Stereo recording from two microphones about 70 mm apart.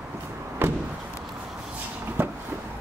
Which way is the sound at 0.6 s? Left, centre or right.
Right.